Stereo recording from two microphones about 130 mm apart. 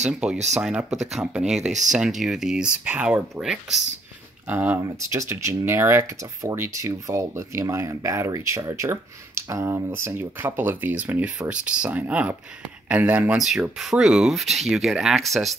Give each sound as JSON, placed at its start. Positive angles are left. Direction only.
{"t": 0.1, "sound": "speech", "side_deg": -10}